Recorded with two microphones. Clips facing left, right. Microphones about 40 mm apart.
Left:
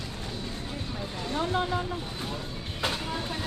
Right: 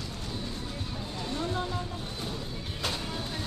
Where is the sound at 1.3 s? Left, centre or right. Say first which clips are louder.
Left 5 dB; left.